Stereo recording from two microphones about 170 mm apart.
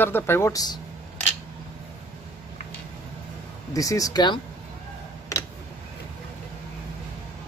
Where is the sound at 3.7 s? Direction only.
20° left (ahead or behind).